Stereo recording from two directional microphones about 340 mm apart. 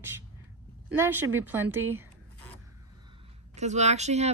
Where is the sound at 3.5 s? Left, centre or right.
Centre.